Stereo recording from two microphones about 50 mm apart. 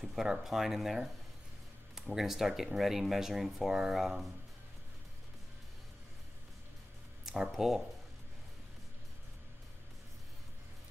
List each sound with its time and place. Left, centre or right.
0.0 s speech: centre
7.2 s speech: centre